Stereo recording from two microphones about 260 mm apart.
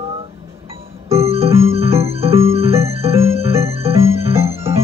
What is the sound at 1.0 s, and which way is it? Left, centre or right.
Music, right.